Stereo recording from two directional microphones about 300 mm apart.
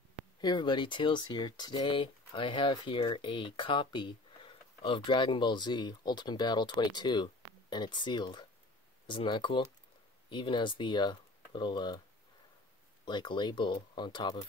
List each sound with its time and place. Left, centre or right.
0.4 s speech: centre
13.0 s speech: centre